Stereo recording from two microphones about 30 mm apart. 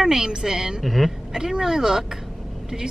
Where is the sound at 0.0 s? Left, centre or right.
Right.